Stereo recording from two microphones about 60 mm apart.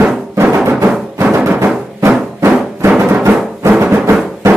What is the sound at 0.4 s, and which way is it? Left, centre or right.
Music, right.